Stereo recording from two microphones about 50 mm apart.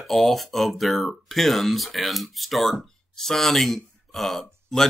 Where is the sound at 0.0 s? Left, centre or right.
Centre.